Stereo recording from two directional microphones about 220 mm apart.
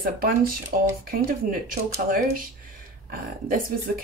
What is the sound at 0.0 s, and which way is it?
Speech, 40° right (ahead or behind).